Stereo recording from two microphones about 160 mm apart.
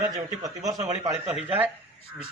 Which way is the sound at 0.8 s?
40° right (ahead or behind).